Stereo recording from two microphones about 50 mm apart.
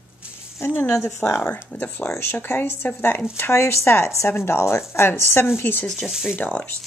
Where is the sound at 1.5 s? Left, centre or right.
Left.